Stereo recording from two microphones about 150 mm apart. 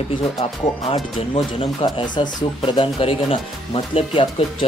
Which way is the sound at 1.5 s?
30° left (ahead or behind).